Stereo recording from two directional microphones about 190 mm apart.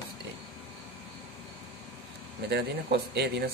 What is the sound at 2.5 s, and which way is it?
Speech, 60° right (ahead or behind).